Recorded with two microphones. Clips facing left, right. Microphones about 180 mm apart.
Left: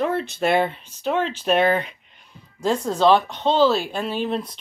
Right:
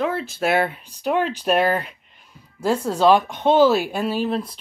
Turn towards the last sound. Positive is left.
turn(degrees=-5)  # may be behind; listen again after turning